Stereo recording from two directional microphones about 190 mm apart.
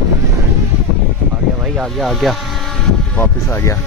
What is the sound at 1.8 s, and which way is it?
Speech, centre (ahead or behind).